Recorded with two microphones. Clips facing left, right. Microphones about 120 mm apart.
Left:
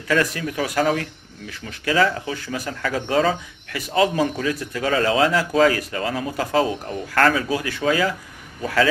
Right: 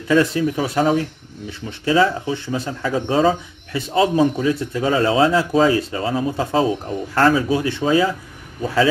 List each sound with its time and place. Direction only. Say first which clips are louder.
0.1 s speech: right 5 dB; 20° right (ahead or behind)